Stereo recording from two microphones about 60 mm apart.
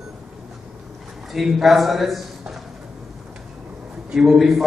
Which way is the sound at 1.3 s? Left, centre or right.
Centre.